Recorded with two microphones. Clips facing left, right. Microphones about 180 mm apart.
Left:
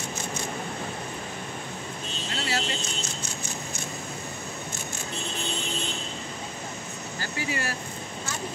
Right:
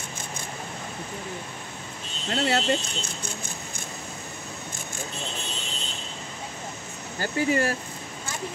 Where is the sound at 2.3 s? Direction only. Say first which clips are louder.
Right 7 dB; 55° right (ahead or behind).